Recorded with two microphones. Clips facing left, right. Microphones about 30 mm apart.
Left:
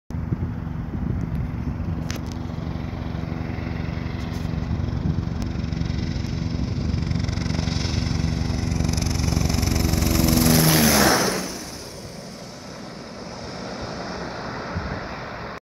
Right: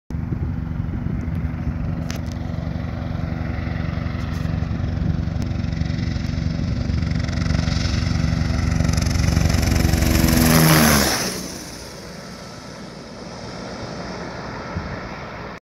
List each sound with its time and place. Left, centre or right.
3.3 s vehicle: centre
5.6 s vehicle: centre
10.1 s lawn mower: right
10.5 s lawn mower: right
14.0 s vehicle: centre